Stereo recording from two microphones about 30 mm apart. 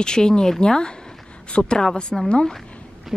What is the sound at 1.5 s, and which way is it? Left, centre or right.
Speech, left.